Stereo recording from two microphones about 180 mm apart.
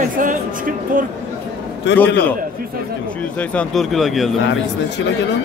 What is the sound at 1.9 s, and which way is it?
Speech, 75° left (ahead or behind).